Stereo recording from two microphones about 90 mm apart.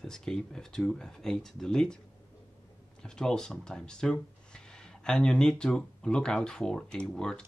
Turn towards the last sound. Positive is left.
turn(degrees=10)  # may be behind; listen again after turning